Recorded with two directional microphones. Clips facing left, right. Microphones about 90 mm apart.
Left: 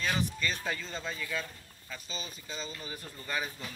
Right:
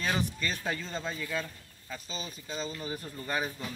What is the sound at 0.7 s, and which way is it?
Speech, 15° right (ahead or behind).